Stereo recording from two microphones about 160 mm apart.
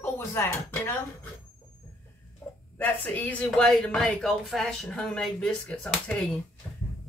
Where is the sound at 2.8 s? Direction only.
10° left (ahead or behind).